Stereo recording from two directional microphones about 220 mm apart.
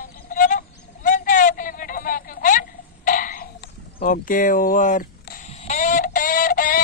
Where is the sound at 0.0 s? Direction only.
35° left (ahead or behind).